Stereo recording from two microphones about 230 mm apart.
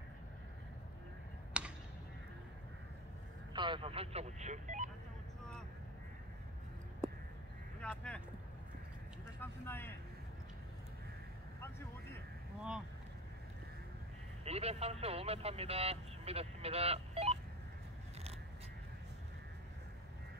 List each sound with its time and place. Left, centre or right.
1.5 s a sound: centre
3.5 s speech: right
7.8 s speech: centre
9.4 s speech: centre
14.4 s speech: right